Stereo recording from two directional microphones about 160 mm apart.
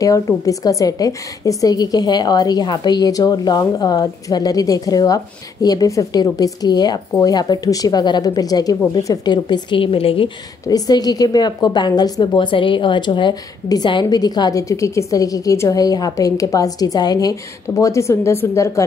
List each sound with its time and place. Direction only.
0.0 s a woman's voice: 20° left (ahead or behind)